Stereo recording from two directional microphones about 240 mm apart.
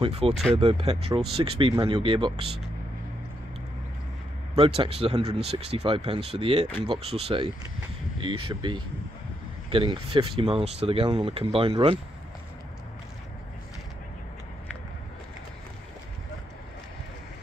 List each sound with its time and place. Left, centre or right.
0.0 s speech: right
4.6 s speech: right
6.7 s speech: centre
7.2 s speech: right